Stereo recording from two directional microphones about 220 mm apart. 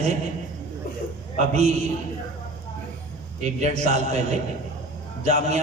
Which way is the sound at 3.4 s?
30° right (ahead or behind).